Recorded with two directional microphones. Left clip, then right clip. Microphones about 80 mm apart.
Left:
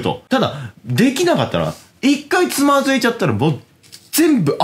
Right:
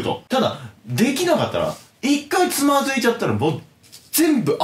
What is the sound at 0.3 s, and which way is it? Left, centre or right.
Speech, left.